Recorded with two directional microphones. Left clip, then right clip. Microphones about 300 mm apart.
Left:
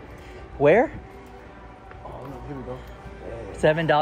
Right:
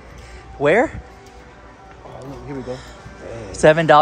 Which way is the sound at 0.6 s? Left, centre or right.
Centre.